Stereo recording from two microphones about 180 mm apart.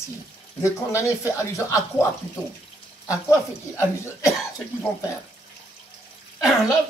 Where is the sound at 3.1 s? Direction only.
15° left (ahead or behind).